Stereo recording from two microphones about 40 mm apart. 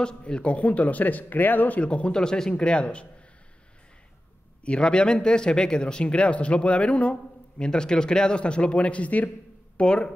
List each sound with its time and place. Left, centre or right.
0.0 s speech: left
1.8 s speech: left
2.2 s speech: centre
4.6 s speech: left
9.8 s speech: left